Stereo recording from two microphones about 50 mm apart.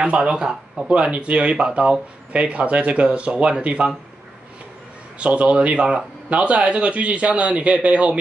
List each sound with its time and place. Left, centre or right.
0.0 s speech: right
0.8 s speech: right
5.2 s speech: right